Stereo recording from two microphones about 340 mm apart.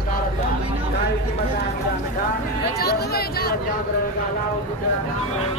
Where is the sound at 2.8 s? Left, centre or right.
Left.